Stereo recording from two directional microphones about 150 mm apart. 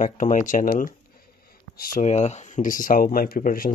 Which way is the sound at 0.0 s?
55° left (ahead or behind).